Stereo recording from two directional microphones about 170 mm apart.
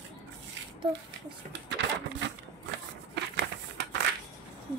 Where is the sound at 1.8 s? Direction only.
90° right.